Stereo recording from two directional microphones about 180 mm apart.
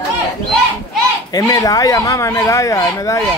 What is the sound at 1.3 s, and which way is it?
Speech, 20° left (ahead or behind).